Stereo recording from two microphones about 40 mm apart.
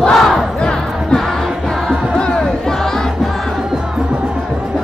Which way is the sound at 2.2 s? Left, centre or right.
Left.